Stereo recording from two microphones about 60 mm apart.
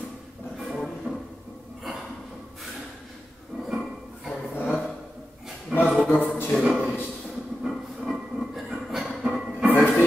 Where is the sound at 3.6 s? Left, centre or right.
Centre.